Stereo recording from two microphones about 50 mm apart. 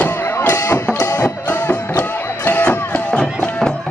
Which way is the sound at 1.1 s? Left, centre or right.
Left.